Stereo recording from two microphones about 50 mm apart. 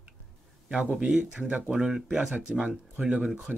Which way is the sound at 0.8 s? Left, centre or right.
Right.